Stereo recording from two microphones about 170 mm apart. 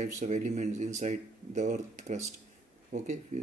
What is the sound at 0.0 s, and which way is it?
Speech, 45° right (ahead or behind).